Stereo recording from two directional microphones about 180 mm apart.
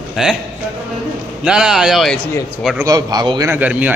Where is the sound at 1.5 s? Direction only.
5° right (ahead or behind).